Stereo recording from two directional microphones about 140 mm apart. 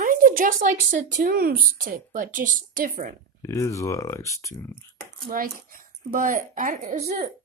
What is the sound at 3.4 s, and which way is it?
Speech, 20° left (ahead or behind).